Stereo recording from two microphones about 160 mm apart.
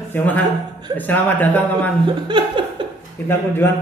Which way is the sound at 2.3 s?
30° right (ahead or behind).